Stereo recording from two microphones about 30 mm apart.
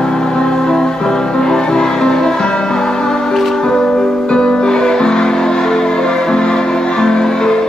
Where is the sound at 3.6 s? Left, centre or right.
Centre.